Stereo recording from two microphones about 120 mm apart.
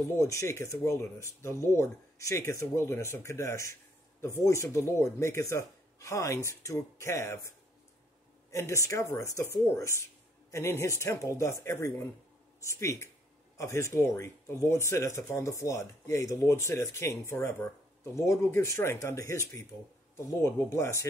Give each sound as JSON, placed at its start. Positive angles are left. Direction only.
{"t": 0.1, "sound": "speech", "side_deg": 25}
{"t": 8.5, "sound": "speech", "side_deg": 25}